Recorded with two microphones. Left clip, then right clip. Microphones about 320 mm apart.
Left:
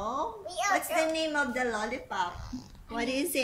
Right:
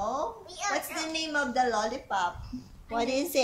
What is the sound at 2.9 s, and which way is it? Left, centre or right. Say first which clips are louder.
Speech: right 3 dB; centre.